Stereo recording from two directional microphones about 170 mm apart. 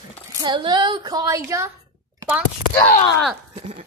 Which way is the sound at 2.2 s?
10° right (ahead or behind).